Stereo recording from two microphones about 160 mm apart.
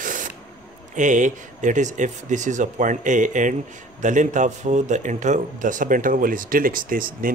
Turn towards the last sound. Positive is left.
turn(degrees=-60)  # may be behind; listen again after turning